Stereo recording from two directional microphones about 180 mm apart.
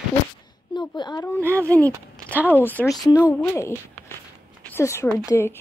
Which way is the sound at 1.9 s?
10° right (ahead or behind).